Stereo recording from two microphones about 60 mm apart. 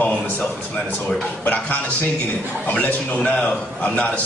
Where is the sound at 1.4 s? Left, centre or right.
Left.